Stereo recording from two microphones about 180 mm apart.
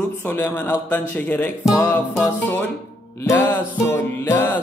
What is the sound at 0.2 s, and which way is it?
Music, 10° left (ahead or behind).